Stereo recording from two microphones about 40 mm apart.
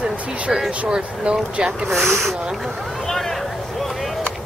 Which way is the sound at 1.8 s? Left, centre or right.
Centre.